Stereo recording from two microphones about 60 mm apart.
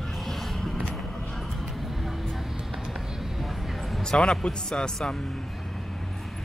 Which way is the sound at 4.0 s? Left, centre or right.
Centre.